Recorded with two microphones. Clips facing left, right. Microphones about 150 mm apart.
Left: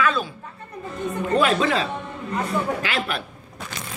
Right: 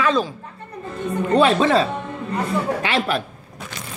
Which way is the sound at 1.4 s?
35° right (ahead or behind).